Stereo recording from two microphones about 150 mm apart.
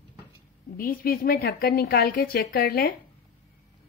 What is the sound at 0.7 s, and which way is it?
Speech, 70° left (ahead or behind).